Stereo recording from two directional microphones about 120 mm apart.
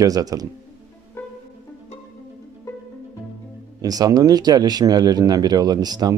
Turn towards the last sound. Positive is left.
turn(degrees=-35)  # may be behind; listen again after turning